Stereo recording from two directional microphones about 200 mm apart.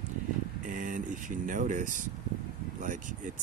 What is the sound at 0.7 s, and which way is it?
Speech, 40° right (ahead or behind).